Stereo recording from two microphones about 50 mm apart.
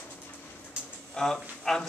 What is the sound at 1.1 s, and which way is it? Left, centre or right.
Speech, centre.